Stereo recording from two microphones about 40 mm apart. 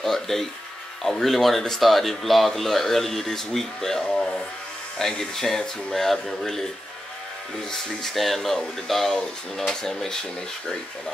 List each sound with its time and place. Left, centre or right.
0.0 s speech: centre
7.7 s speech: centre